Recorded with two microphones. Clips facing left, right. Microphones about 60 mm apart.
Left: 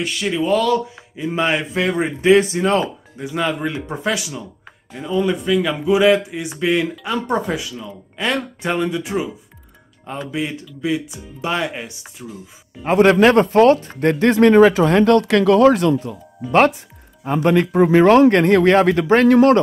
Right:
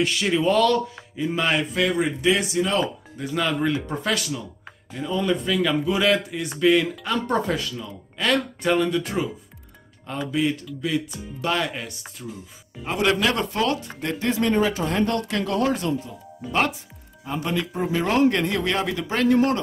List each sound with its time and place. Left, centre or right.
0.0 s speech: centre
1.1 s a man's voice: centre; by 2.8 s left
2.8 s speech: centre
12.8 s speech: left
14.1 s speech: left
17.2 s a man's voice: left
19.3 s a man's voice: left